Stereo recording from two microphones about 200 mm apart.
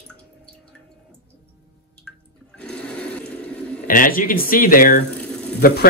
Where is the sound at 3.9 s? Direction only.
45° left (ahead or behind).